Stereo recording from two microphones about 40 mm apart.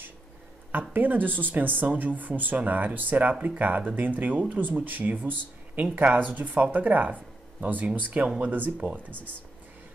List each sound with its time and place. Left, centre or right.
0.7 s speech: right